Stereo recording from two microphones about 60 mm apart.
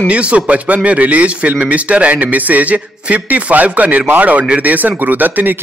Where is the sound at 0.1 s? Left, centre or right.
Centre.